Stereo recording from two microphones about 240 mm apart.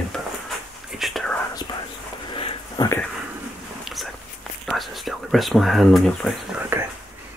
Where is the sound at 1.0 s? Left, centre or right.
Centre.